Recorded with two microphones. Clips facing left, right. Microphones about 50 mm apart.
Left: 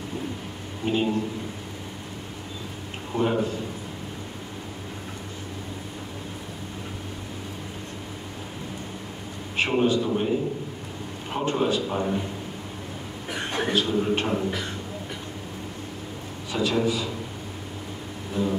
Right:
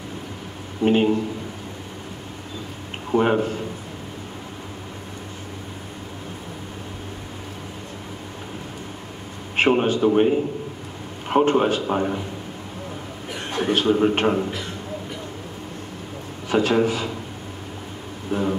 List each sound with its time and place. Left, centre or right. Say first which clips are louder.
0.8 s a man's voice: right 7 dB; right
3.1 s a man's voice: right 5 dB; right
9.6 s a man's voice: right 4 dB; right
13.7 s a man's voice: right 6 dB; right
16.4 s a man's voice: right 5 dB; right
18.3 s a man's voice: right 3 dB; right